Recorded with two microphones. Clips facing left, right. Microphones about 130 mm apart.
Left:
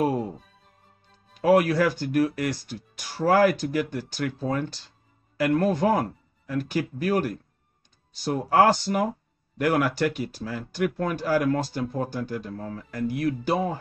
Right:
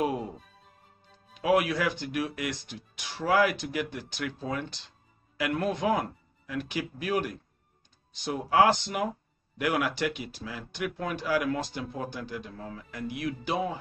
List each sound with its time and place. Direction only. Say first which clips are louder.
1.3 s speech: left 5 dB; 45° left (ahead or behind)